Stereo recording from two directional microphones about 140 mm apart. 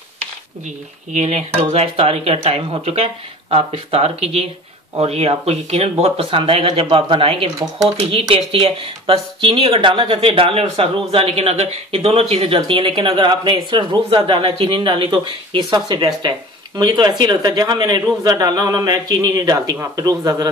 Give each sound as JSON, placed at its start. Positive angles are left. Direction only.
{"t": 1.1, "sound": "a man's voice", "side_deg": -50}